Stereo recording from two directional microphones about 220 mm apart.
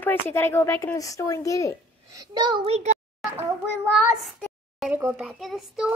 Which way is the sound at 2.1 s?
15° right (ahead or behind).